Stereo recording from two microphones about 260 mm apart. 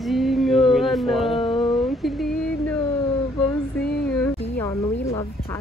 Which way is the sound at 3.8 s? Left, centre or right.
Left.